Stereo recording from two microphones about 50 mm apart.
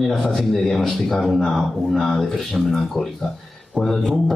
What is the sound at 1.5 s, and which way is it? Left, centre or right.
Speech, centre.